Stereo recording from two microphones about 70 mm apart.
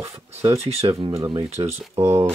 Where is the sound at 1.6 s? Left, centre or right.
Right.